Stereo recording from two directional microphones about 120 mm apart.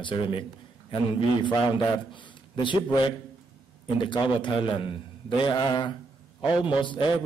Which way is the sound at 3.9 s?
45° left (ahead or behind).